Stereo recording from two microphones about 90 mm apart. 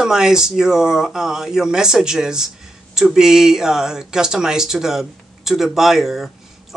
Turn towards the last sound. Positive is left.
turn(degrees=-5)  # may be behind; listen again after turning